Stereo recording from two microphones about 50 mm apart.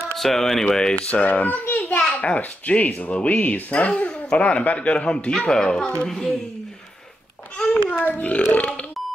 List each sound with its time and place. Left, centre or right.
0.2 s speech: centre
0.7 s a child's voice: centre
1.4 s a child's voice: left
2.0 s a child's voice: centre
7.9 s a child's voice: left
8.5 s burping: left